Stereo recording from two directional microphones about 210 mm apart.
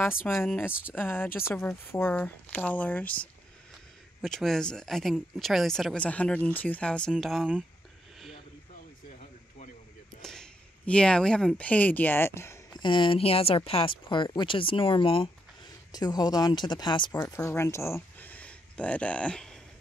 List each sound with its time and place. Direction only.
0.4 s speech: 10° left (ahead or behind)
10.2 s speech: 5° left (ahead or behind)
12.8 s speech: 25° left (ahead or behind); by 19.6 s 5° left (ahead or behind)